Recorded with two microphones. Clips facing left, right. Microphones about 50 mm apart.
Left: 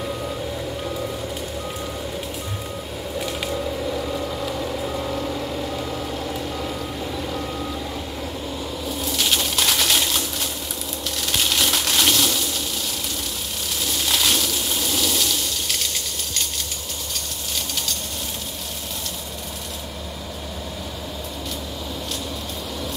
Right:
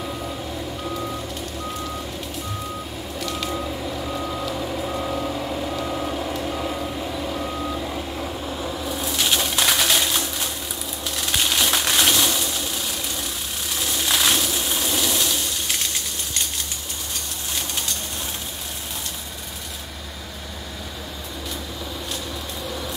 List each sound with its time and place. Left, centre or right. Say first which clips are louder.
3.2 s vehicle: left 1 dB; centre
3.4 s vehicle: left 2 dB; centre
4.5 s reversing beeps: even; centre
11.6 s crushing: right 1 dB; centre
14.0 s a sound: right 1 dB; centre